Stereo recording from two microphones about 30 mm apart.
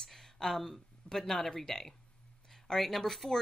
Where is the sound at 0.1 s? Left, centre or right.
Centre.